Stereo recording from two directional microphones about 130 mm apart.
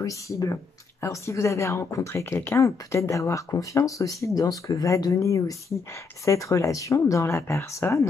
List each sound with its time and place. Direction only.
0.0 s speech: 25° left (ahead or behind)